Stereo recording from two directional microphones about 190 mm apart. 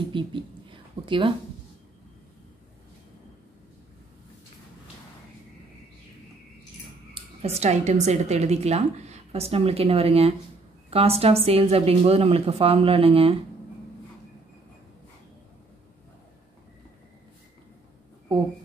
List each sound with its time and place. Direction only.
0.1 s a woman's voice: 25° right (ahead or behind)
7.4 s a woman's voice: 35° right (ahead or behind)